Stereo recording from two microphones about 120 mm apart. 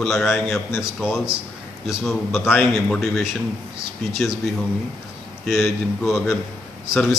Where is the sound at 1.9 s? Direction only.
Centre (ahead or behind).